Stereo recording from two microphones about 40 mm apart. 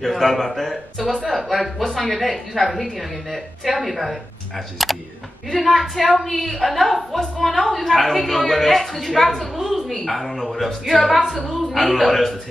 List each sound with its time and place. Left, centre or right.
0.0 s a man's voice: centre
9.6 s a woman's voice: centre